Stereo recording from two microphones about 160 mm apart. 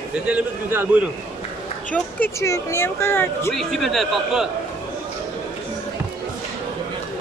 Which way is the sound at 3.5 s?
Centre (ahead or behind).